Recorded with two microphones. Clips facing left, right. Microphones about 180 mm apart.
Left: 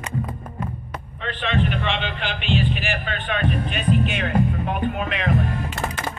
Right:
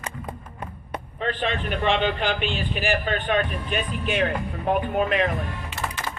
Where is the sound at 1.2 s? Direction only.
45° right (ahead or behind).